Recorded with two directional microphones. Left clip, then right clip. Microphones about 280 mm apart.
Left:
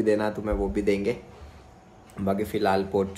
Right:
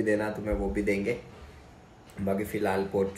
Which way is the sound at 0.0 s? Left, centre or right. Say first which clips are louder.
Left 4 dB; centre.